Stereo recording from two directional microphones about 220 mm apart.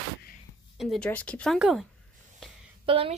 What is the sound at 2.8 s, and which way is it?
Speech, 25° right (ahead or behind).